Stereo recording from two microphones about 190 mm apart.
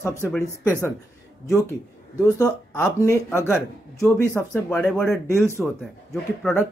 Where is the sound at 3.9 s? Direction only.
15° left (ahead or behind).